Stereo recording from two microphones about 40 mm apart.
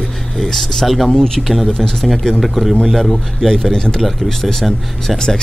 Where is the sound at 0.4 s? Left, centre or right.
Centre.